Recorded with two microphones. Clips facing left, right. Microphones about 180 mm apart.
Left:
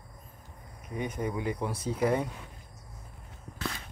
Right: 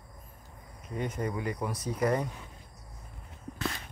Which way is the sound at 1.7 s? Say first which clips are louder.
Left 1 dB; 30° left (ahead or behind).